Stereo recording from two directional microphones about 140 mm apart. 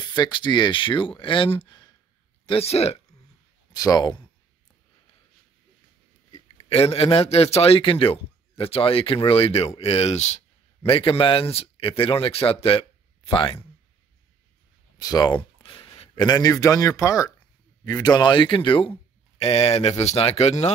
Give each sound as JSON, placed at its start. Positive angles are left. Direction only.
{"t": 0.0, "sound": "a man's voice", "side_deg": 30}
{"t": 3.7, "sound": "speech", "side_deg": 30}
{"t": 6.7, "sound": "a man's voice", "side_deg": 45}
{"t": 10.9, "sound": "speech", "side_deg": 40}
{"t": 15.0, "sound": "a man's voice", "side_deg": 25}